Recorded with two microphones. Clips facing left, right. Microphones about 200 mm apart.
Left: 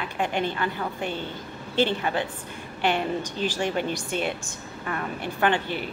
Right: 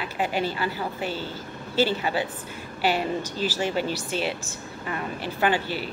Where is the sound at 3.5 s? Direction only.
5° right (ahead or behind).